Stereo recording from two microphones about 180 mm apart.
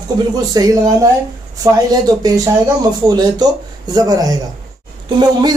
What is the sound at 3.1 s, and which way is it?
Speech, 20° right (ahead or behind).